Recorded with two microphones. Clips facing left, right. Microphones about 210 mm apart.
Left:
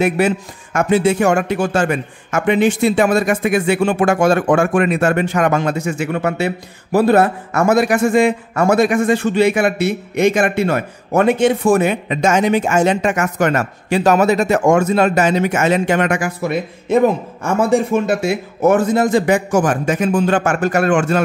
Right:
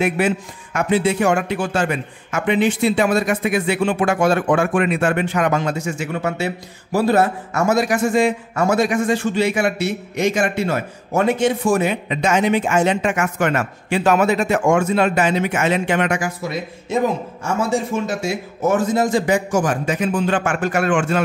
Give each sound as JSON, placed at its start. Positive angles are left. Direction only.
{"t": 0.7, "sound": "a man's voice", "side_deg": 45}